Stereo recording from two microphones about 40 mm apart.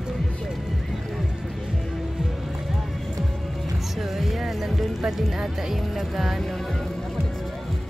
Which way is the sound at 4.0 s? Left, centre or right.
Centre.